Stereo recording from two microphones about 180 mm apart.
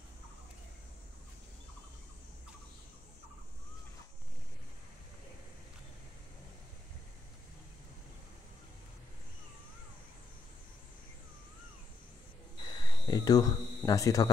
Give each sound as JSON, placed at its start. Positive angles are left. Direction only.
{"t": 12.6, "sound": "speech", "side_deg": 25}